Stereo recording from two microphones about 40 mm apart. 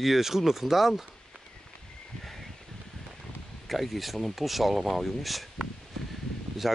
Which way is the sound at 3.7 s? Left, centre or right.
Centre.